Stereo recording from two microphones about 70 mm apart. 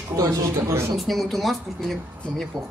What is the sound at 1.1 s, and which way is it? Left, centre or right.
Speech, centre.